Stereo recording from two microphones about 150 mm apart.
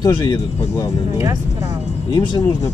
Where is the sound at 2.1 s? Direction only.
30° left (ahead or behind).